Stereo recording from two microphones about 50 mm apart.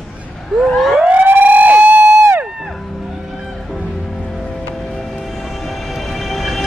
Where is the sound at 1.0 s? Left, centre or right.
Right.